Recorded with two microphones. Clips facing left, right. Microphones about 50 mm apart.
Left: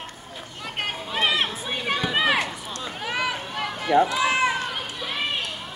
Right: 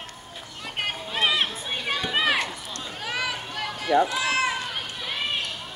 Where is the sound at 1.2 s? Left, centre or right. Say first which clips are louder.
Even; centre.